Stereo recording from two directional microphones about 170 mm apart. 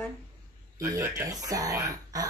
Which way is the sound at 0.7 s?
20° right (ahead or behind).